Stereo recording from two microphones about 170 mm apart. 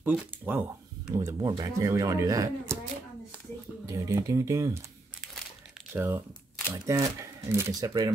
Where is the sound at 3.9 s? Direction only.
20° right (ahead or behind).